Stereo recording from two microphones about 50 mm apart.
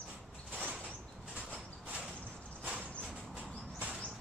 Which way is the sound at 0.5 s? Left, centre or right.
Right.